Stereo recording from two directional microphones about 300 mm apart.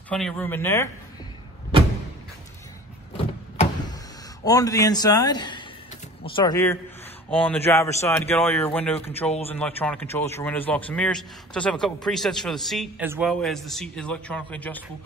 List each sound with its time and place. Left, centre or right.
0.1 s speech: centre
3.2 s vehicle: centre
4.5 s speech: centre